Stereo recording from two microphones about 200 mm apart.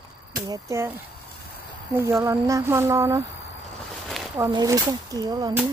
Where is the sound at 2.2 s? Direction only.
15° right (ahead or behind).